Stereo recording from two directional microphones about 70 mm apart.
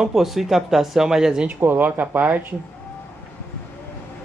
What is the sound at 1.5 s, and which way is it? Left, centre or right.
Speech, right.